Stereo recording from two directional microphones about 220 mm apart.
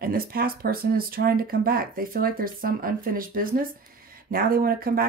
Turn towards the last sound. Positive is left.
turn(degrees=-40)  # may be behind; listen again after turning